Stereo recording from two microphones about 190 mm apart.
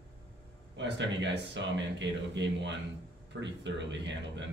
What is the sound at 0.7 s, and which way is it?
Speech, 70° right (ahead or behind).